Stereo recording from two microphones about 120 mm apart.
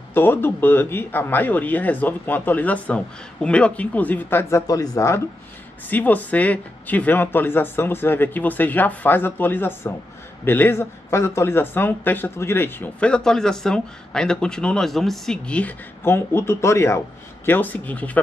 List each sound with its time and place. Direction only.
0.1 s speech: 15° left (ahead or behind)
5.9 s speech: 15° left (ahead or behind)
16.0 s speech: 20° left (ahead or behind)